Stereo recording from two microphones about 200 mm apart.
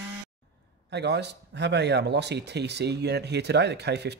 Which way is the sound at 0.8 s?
60° right (ahead or behind).